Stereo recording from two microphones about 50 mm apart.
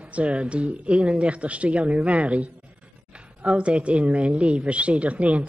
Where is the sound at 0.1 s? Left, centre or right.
Right.